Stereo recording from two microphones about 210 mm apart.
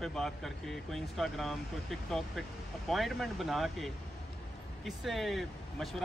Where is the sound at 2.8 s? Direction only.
Centre (ahead or behind).